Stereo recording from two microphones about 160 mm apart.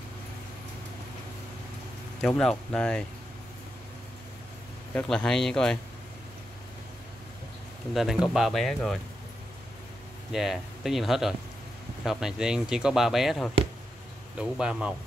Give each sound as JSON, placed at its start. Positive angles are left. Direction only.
{"t": 2.2, "sound": "speech", "side_deg": 5}
{"t": 4.9, "sound": "speech", "side_deg": 5}
{"t": 7.9, "sound": "speech", "side_deg": 0}
{"t": 10.3, "sound": "speech", "side_deg": 0}